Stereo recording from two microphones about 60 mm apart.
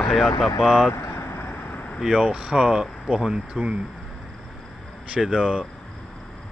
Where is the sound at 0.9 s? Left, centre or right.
Left.